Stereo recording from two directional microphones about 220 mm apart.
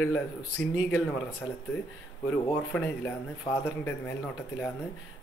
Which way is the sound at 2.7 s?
10° left (ahead or behind).